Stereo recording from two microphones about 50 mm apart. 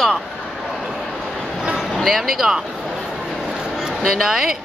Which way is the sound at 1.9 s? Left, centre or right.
Centre.